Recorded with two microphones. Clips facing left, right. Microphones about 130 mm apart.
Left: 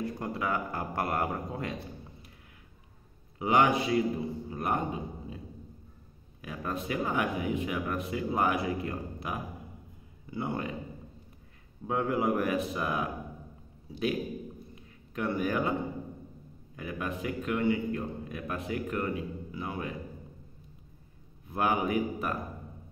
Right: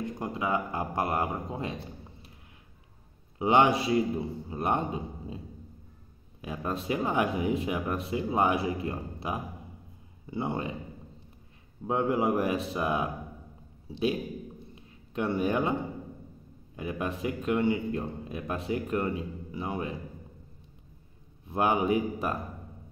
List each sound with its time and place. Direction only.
0.0 s speech: 20° right (ahead or behind)
3.3 s a man's voice: 30° right (ahead or behind)
6.4 s a man's voice: 25° right (ahead or behind)
11.9 s a man's voice: 30° right (ahead or behind)
14.8 s a sound: 25° right (ahead or behind)
16.7 s a man's voice: 30° right (ahead or behind)
21.5 s a man's voice: 30° right (ahead or behind)